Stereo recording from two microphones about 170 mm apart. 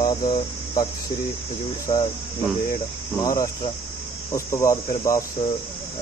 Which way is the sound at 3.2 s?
20° left (ahead or behind).